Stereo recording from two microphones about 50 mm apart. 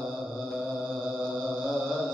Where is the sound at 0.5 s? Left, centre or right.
Centre.